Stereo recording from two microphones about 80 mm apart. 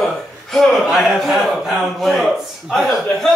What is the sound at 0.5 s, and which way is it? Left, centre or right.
A man's voice, centre.